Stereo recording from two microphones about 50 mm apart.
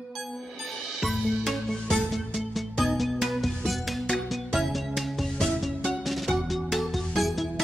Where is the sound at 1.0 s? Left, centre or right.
Centre.